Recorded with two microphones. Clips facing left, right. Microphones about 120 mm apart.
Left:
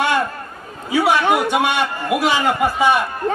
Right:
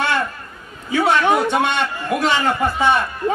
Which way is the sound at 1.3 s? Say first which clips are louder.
Even; 10° left (ahead or behind).